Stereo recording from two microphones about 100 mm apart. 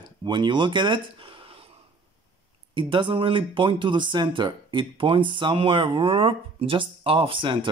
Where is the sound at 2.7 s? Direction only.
55° right (ahead or behind).